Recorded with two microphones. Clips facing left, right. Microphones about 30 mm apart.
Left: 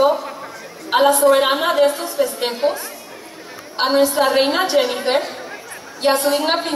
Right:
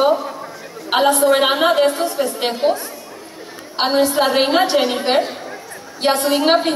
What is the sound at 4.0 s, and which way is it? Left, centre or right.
A woman's voice, right.